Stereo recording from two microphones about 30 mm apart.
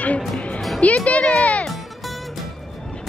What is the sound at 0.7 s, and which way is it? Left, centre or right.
Music, left.